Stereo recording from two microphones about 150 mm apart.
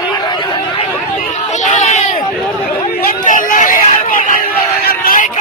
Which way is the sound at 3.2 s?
60° left (ahead or behind).